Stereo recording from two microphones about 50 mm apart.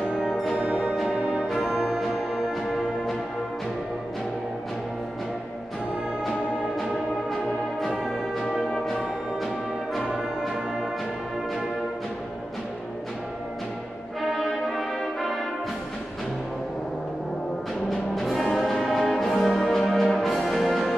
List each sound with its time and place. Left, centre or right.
0.1 s brass instrument: centre
0.6 s music: centre
7.8 s music: centre
10.4 s music: centre
14.3 s brass instrument: centre
17.8 s brass instrument: centre
19.7 s music: centre